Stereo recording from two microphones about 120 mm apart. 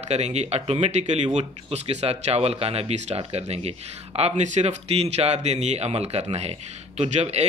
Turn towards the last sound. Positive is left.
turn(degrees=-65)  # may be behind; listen again after turning